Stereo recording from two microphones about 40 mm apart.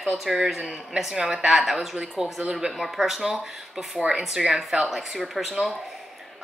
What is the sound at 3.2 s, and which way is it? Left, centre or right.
Speech, centre.